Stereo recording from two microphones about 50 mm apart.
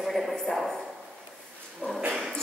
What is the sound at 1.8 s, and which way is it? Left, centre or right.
Speech, left.